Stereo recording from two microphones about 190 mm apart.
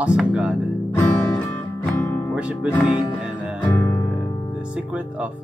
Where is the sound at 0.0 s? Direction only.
5° right (ahead or behind).